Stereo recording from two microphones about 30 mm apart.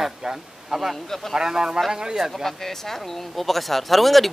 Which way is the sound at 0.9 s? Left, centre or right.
Centre.